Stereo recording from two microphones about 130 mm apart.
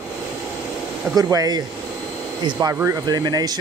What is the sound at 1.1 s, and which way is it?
Speech, 30° right (ahead or behind).